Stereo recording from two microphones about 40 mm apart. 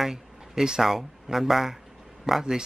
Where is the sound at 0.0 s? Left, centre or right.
Centre.